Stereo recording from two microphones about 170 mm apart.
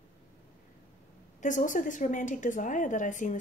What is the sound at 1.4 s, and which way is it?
Speech, 50° left (ahead or behind).